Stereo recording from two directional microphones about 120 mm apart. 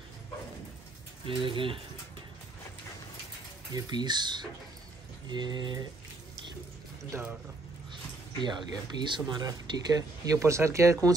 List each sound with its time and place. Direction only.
1.2 s speech: 45° right (ahead or behind)
3.7 s speech: 35° right (ahead or behind)
7.1 s speech: 15° right (ahead or behind)
7.9 s a sound: 40° right (ahead or behind)
9.0 s speech: 40° right (ahead or behind)